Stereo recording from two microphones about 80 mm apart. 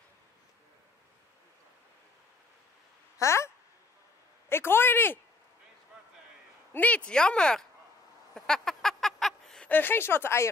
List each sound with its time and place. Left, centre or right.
3.2 s speech: left
6.7 s speech: centre
8.4 s a sound: centre
9.7 s speech: left